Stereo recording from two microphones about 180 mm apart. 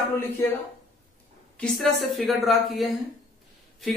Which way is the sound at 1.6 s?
Centre (ahead or behind).